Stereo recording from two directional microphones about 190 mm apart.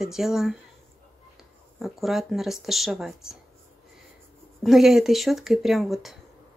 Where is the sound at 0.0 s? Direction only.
Centre (ahead or behind).